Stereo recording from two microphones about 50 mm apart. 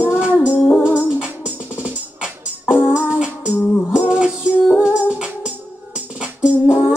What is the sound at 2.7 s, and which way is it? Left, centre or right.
Music, centre.